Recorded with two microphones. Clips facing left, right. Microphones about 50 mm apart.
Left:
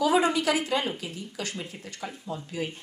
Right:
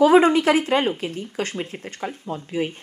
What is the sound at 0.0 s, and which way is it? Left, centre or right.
Speech, right.